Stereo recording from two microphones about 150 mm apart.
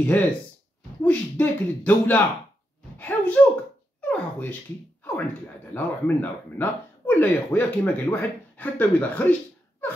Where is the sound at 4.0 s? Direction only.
10° left (ahead or behind).